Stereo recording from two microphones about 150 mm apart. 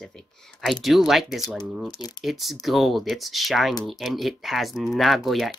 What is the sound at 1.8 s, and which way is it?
Speech, 25° left (ahead or behind).